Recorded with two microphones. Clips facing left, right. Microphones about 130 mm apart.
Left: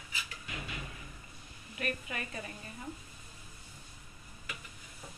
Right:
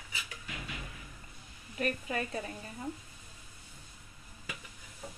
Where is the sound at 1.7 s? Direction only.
35° right (ahead or behind).